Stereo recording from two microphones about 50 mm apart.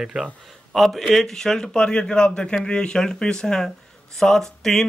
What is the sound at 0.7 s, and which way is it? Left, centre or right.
A man's voice, centre.